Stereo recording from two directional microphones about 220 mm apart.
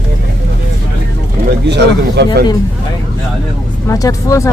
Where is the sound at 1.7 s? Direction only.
50° right (ahead or behind).